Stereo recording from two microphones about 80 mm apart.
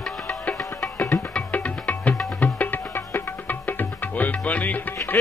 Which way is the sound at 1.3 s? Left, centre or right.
Centre.